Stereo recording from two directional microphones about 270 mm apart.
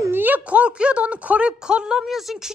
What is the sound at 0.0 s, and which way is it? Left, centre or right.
A woman's voice, centre.